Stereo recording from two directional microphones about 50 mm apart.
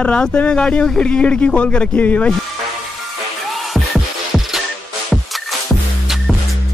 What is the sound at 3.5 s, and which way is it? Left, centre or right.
Music, centre.